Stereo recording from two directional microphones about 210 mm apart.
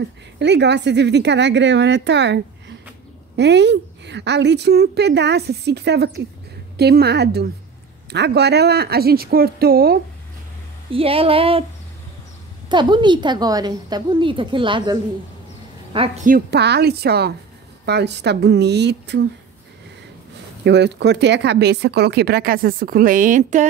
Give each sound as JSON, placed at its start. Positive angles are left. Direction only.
{"t": 0.0, "sound": "a woman's voice", "side_deg": -55}
{"t": 10.9, "sound": "a woman's voice", "side_deg": -25}
{"t": 12.6, "sound": "a woman's voice", "side_deg": -20}
{"t": 16.3, "sound": "speech", "side_deg": -50}
{"t": 20.6, "sound": "speech", "side_deg": -55}